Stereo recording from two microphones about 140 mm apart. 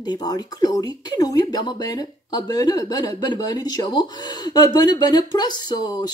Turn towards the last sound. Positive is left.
turn(degrees=30)  # may be behind; listen again after turning